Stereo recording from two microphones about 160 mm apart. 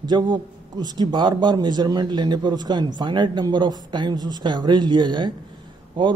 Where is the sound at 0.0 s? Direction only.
30° right (ahead or behind).